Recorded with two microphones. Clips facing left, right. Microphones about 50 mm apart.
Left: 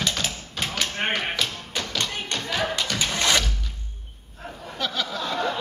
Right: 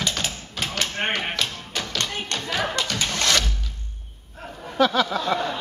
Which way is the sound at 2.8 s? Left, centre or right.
Centre.